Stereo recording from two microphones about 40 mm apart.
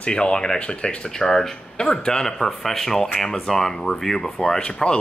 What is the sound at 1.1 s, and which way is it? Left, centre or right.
Speech, centre.